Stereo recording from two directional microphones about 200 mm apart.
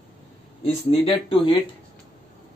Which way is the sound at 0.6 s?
30° left (ahead or behind).